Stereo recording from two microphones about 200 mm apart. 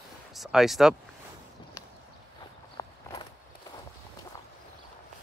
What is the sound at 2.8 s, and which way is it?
Walk, 20° left (ahead or behind).